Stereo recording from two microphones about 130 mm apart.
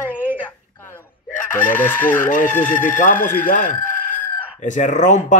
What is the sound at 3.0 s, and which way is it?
Speech, 80° left.